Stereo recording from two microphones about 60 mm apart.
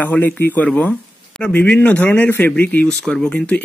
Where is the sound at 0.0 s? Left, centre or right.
Left.